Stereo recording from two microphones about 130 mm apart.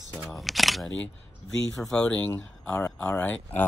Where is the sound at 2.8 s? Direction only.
25° left (ahead or behind).